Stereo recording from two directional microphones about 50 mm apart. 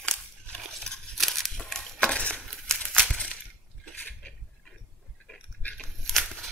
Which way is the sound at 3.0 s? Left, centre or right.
Centre.